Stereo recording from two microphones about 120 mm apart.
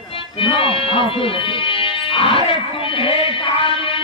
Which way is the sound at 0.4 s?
45° left (ahead or behind).